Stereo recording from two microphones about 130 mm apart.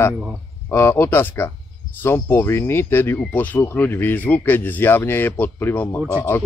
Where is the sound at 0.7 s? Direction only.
20° left (ahead or behind).